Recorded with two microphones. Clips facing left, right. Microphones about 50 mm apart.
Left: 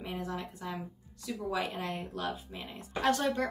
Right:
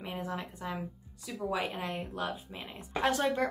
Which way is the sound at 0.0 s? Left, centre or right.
Centre.